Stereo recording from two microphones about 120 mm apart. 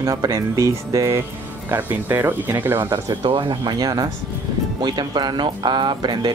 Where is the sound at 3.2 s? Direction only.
45° right (ahead or behind).